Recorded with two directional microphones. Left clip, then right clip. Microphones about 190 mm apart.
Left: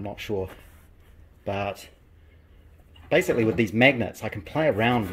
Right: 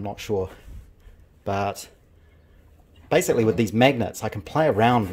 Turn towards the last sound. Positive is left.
turn(degrees=-25)  # may be behind; listen again after turning